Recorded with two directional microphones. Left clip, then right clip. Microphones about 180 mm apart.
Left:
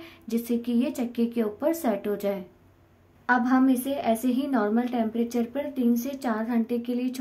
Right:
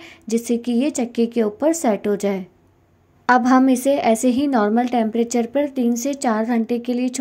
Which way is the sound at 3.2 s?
40° right (ahead or behind).